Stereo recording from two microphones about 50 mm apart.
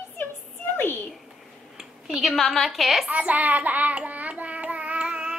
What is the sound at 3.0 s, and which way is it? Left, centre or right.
Child singing, right.